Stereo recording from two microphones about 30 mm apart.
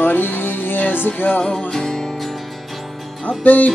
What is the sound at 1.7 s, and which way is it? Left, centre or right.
Music, centre.